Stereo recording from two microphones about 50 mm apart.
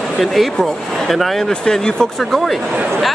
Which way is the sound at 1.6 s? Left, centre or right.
Centre.